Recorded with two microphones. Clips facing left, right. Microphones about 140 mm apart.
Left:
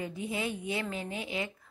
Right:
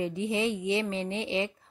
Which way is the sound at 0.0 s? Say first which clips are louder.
Right 6 dB; 25° right (ahead or behind).